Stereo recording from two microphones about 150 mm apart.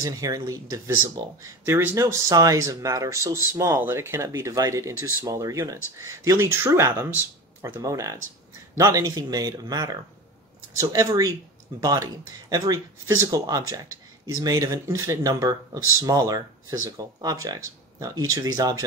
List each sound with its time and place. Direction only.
0.0 s speech: 25° right (ahead or behind)